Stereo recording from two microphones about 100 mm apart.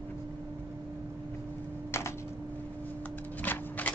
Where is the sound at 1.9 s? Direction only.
25° left (ahead or behind).